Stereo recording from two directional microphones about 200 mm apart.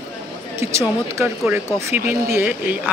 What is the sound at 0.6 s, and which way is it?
Speech, 15° right (ahead or behind).